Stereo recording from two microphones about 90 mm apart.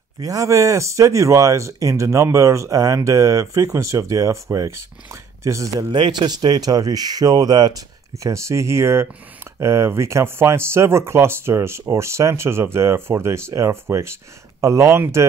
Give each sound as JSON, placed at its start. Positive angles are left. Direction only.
{"t": 0.2, "sound": "speech", "side_deg": -40}
{"t": 5.9, "sound": "speech", "side_deg": -55}
{"t": 8.2, "sound": "speech", "side_deg": -35}